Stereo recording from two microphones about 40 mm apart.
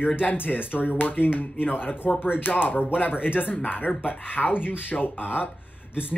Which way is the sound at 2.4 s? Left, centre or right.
Left.